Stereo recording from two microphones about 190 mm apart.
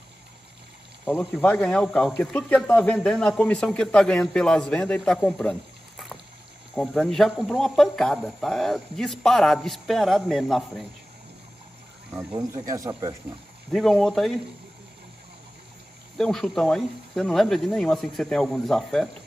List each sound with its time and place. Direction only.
1.1 s speech: 5° left (ahead or behind)
12.1 s speech: 20° right (ahead or behind)
13.7 s speech: centre (ahead or behind)
16.2 s speech: centre (ahead or behind)